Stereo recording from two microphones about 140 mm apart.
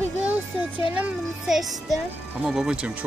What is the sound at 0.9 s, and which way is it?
Speech, 5° right (ahead or behind).